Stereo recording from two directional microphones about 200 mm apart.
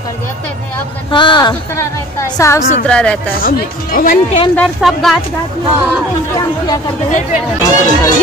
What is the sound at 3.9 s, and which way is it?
Speech, 45° left (ahead or behind).